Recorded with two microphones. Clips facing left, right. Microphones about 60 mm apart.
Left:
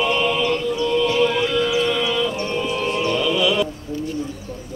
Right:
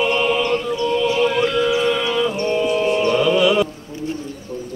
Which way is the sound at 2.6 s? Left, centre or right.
Centre.